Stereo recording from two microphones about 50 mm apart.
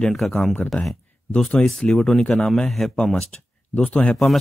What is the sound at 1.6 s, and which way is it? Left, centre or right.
Speech, left.